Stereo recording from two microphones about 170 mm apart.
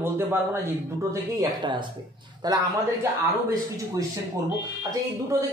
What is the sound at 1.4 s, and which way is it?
Speech, 30° right (ahead or behind).